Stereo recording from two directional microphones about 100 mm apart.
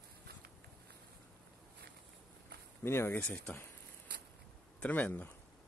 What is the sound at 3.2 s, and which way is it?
Speech, 15° left (ahead or behind).